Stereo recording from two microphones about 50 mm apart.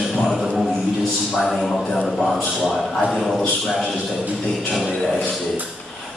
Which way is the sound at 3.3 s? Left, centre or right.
Centre.